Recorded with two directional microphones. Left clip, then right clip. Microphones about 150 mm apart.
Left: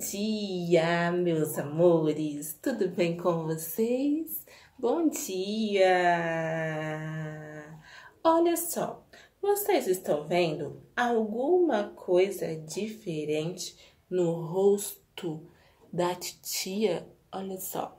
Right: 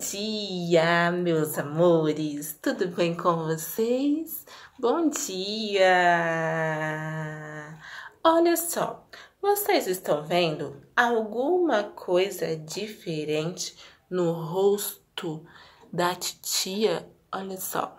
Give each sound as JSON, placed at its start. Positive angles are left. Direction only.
{"t": 0.0, "sound": "a woman's voice", "side_deg": 20}
{"t": 8.2, "sound": "a woman's voice", "side_deg": 20}